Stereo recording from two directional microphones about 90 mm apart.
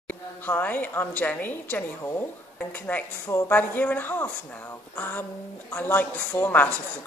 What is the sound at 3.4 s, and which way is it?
Speech, 20° left (ahead or behind).